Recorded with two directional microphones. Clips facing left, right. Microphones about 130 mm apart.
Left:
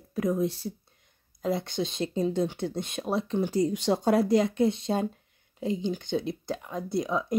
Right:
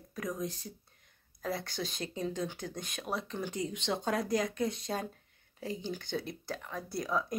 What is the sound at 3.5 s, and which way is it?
Speech, 35° left (ahead or behind).